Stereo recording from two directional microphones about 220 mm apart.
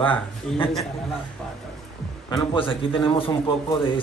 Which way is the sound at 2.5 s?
25° left (ahead or behind).